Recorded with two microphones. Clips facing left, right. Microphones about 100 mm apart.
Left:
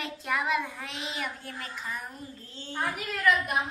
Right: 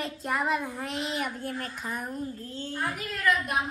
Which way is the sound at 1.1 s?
50° right (ahead or behind).